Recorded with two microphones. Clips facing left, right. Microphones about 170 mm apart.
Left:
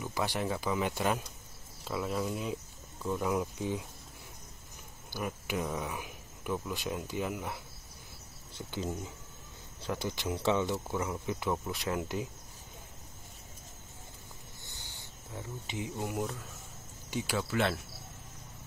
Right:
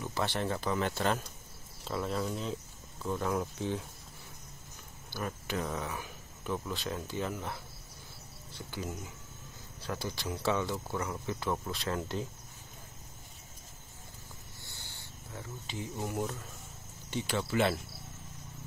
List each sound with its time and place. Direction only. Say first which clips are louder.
0.0 s speech: even; 10° left (ahead or behind)
5.1 s speech: left 1 dB; 15° left (ahead or behind)
14.6 s cricket: even; 15° left (ahead or behind)
17.1 s speech: even; 10° left (ahead or behind)